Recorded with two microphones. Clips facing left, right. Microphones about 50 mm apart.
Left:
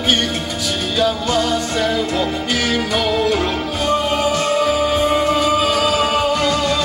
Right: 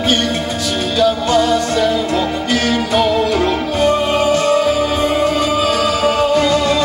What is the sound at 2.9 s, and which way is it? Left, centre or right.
Music, centre.